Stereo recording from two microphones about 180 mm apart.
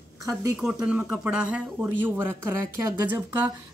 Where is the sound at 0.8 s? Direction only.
10° right (ahead or behind).